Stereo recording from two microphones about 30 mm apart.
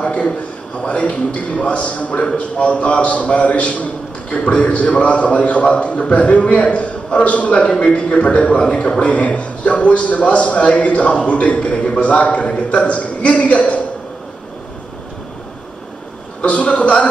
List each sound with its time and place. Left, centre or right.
0.0 s a man's voice: left
4.3 s a man's voice: left
16.3 s a man's voice: left